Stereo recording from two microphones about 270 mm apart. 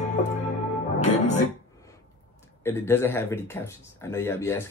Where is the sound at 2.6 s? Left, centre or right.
Centre.